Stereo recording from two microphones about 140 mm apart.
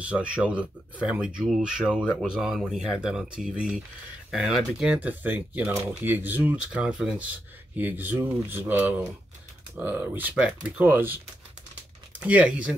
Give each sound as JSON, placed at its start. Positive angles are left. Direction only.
{"t": 0.0, "sound": "speech", "side_deg": -10}
{"t": 12.2, "sound": "speech", "side_deg": -10}